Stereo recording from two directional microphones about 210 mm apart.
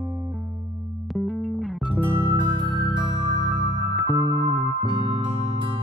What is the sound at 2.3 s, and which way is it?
Music, 20° right (ahead or behind).